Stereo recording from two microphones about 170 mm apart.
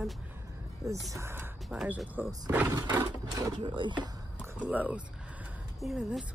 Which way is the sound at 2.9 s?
20° right (ahead or behind).